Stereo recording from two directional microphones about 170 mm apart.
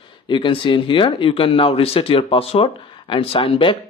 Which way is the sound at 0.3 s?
30° left (ahead or behind).